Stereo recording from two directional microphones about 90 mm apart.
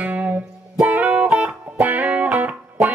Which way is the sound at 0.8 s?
20° right (ahead or behind).